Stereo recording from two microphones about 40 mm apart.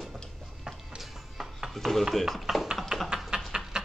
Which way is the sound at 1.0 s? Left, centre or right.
Centre.